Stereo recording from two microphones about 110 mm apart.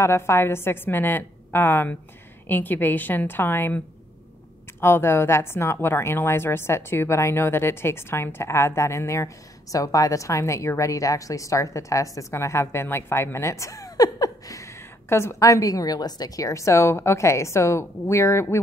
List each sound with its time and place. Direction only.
0.0 s a woman's voice: 25° left (ahead or behind)